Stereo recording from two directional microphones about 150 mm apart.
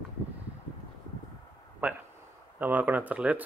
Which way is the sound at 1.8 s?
10° right (ahead or behind).